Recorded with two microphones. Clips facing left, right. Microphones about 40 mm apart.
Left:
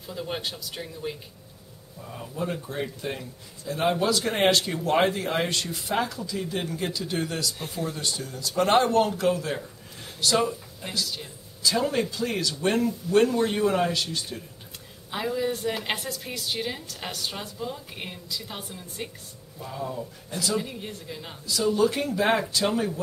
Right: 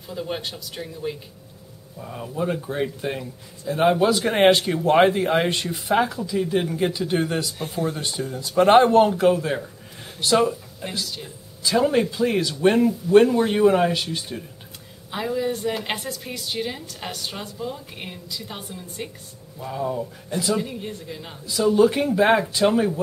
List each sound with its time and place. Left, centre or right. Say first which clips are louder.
0.1 s a woman's voice: right 3 dB; centre
2.0 s speech: right 5 dB; centre
15.0 s a woman's voice: right 3 dB; centre
19.6 s speech: right 6 dB; centre
20.6 s a woman's voice: right 4 dB; centre
21.5 s speech: right 5 dB; centre